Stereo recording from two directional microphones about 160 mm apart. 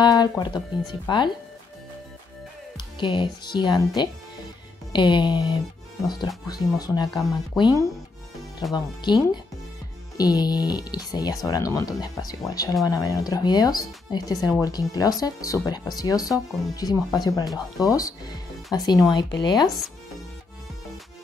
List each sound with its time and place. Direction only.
0.0 s speech: 25° left (ahead or behind)
3.0 s speech: 30° left (ahead or behind)